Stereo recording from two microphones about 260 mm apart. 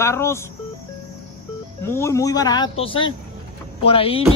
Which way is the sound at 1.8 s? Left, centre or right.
Centre.